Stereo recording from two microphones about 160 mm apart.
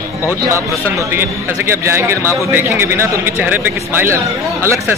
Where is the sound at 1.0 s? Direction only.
15° right (ahead or behind).